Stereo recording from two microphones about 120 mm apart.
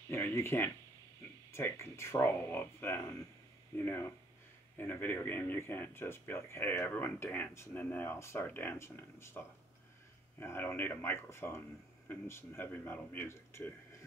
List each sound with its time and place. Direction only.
0.1 s speech: 20° left (ahead or behind)
4.7 s speech: 15° left (ahead or behind)
10.4 s speech: 20° left (ahead or behind)